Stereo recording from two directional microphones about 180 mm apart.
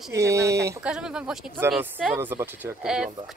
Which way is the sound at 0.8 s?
5° right (ahead or behind).